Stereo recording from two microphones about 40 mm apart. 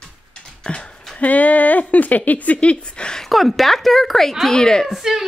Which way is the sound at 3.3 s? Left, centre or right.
Centre.